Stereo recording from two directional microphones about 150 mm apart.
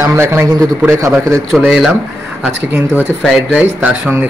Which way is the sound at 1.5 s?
5° right (ahead or behind).